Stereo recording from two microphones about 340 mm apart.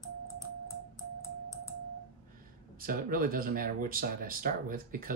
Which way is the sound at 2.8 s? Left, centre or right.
Right.